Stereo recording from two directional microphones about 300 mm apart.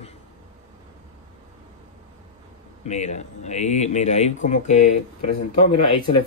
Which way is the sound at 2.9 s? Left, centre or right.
Left.